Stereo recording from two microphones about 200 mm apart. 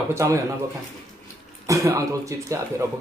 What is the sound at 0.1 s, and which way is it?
Speech, 15° right (ahead or behind).